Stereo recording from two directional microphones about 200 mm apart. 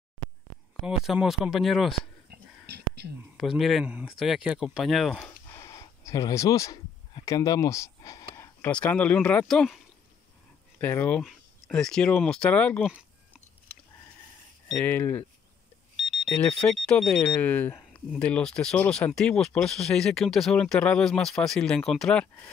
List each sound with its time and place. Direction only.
0.8 s speech: 5° right (ahead or behind)
2.3 s a sound: 55° right (ahead or behind)
3.3 s speech: centre (ahead or behind)
5.5 s speech: 15° left (ahead or behind)
10.8 s speech: 10° left (ahead or behind)
14.7 s speech: 10° left (ahead or behind)